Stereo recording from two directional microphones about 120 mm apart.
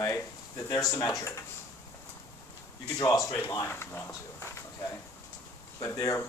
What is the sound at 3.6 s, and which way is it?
Speech, 20° left (ahead or behind).